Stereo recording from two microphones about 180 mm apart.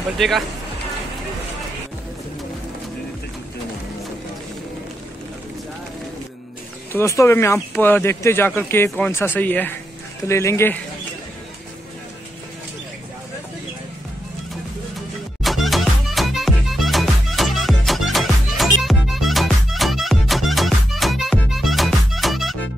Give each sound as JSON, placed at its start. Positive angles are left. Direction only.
{"t": 0.2, "sound": "speech", "side_deg": 0}
{"t": 6.9, "sound": "speech", "side_deg": 15}
{"t": 15.4, "sound": "music", "side_deg": 0}